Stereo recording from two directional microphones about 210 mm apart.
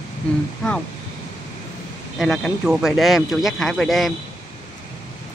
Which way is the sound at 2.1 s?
Centre (ahead or behind).